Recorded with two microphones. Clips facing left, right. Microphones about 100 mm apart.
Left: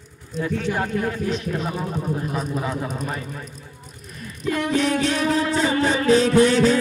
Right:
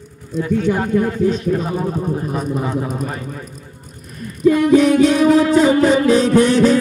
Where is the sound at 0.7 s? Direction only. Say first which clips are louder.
Right 7 dB; 25° right (ahead or behind).